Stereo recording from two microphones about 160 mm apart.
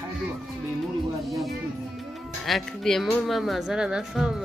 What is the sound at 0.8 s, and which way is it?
Speech, centre (ahead or behind).